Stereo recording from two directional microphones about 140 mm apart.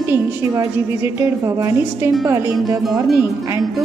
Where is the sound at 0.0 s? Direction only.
15° right (ahead or behind).